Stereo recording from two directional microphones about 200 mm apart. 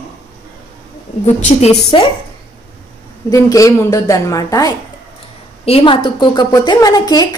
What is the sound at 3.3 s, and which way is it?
A woman's voice, 15° left (ahead or behind).